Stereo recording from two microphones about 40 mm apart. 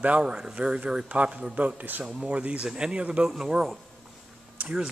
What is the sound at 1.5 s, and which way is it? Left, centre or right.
Speech, right.